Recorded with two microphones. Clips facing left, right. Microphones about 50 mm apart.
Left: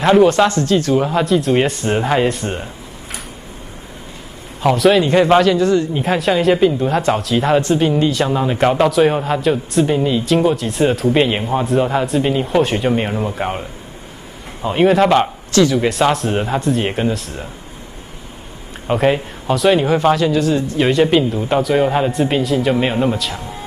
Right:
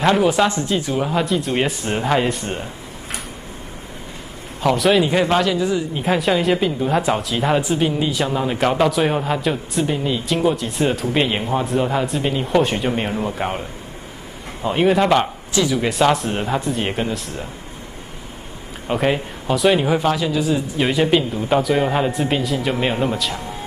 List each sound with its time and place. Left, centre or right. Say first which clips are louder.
0.0 s speech: left 5 dB; centre
0.5 s speech: left 5 dB; centre
0.9 s speech: left 5 dB; centre
4.6 s speech: left 3 dB; centre
5.9 s speech: left 2 dB; centre
15.5 s speech: left 5 dB; centre
18.9 s speech: left 4 dB; centre